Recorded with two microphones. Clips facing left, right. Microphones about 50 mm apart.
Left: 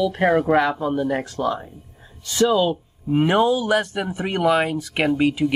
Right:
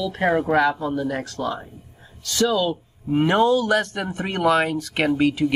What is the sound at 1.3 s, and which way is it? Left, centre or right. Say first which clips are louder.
Speech: left 3 dB; centre.